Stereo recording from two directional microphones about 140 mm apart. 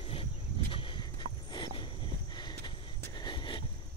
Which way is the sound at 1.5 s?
35° left (ahead or behind).